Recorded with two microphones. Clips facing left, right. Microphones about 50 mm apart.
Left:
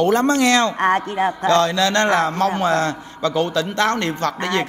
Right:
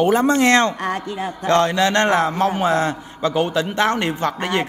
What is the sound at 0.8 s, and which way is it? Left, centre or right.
Speech, left.